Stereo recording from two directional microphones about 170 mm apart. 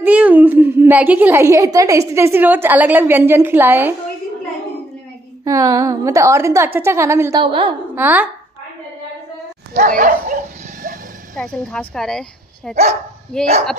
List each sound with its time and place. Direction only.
0.0 s a woman's voice: 10° right (ahead or behind)
5.4 s a woman's voice: 20° right (ahead or behind)
7.4 s a woman's voice: 30° right (ahead or behind)
7.9 s a woman's voice: 10° right (ahead or behind)
9.8 s dog: 50° right (ahead or behind)
11.3 s speech: 5° left (ahead or behind)